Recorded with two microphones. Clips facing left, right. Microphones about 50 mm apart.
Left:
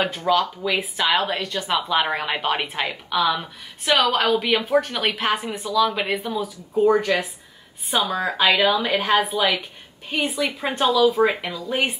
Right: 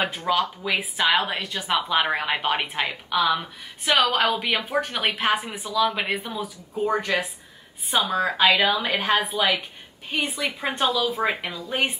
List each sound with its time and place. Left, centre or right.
0.0 s a woman's voice: centre